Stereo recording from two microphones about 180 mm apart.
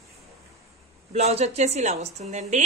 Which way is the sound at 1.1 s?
35° right (ahead or behind).